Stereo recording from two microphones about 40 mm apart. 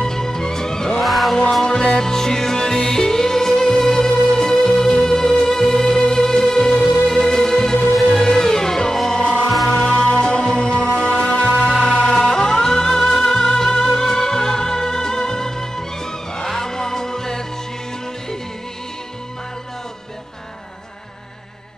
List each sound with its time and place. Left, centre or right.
0.0 s music: centre
1.0 s music: centre
1.6 s music: centre
11.7 s music: centre